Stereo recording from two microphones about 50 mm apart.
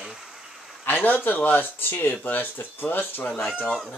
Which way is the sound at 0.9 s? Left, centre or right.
Left.